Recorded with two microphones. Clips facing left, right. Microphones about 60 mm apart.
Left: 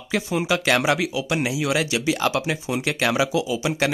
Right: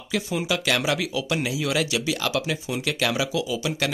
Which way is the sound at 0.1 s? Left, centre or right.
Left.